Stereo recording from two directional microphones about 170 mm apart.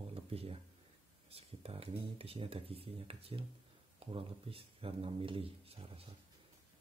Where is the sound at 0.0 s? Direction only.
35° right (ahead or behind).